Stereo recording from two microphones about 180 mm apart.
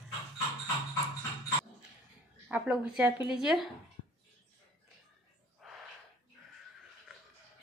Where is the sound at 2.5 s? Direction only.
5° right (ahead or behind).